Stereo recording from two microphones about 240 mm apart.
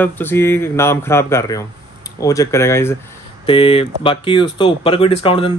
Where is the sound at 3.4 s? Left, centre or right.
Left.